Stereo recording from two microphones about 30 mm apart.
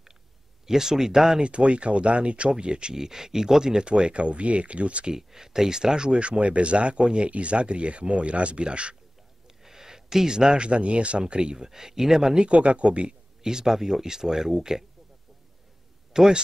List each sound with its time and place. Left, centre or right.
0.7 s speech: centre
1.4 s speech: right
2.9 s speech: centre; by 5.0 s right
5.1 s speech: centre; by 8.9 s right
9.6 s a sound: centre
10.7 s speech: right
11.5 s speech: centre
12.4 s speech: right
13.4 s speech: centre
16.1 s a man's voice: centre